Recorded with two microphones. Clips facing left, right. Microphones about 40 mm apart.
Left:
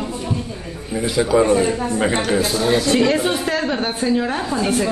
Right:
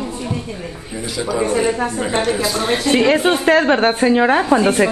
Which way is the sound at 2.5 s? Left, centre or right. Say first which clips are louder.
Even; right.